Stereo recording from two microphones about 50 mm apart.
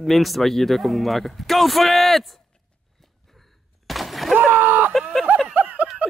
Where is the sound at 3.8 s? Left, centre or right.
Centre.